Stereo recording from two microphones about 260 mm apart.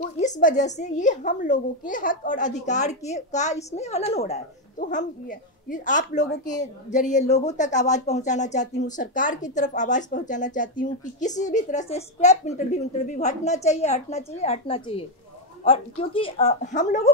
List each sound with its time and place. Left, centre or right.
0.2 s speech: left